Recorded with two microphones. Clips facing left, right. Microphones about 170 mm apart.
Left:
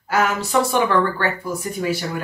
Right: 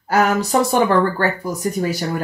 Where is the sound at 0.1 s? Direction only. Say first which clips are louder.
Right 4 dB; 40° right (ahead or behind).